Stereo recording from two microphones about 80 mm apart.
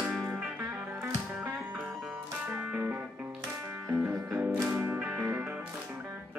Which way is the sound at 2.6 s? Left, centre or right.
Right.